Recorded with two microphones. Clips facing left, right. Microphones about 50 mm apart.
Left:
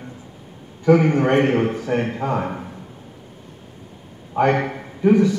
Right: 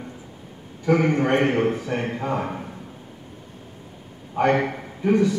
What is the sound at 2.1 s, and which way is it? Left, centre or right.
Speech, centre.